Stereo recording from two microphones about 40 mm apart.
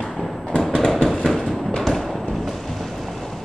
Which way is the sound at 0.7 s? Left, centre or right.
Left.